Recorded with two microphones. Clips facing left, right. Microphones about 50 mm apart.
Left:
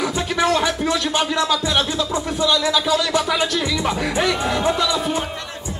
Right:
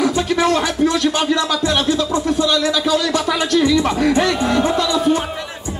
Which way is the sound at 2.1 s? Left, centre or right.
Centre.